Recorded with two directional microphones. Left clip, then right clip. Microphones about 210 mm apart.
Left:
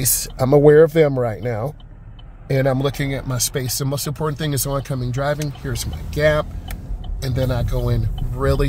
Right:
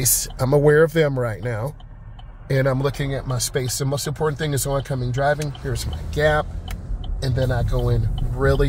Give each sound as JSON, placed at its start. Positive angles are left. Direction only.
{"t": 0.0, "sound": "speech", "side_deg": 15}